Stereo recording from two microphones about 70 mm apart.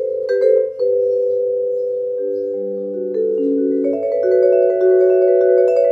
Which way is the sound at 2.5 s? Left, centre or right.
Centre.